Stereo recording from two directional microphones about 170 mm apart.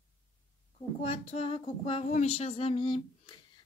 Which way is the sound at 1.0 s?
35° left (ahead or behind).